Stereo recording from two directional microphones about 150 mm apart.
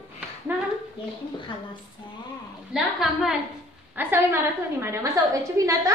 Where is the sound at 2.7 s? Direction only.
Centre (ahead or behind).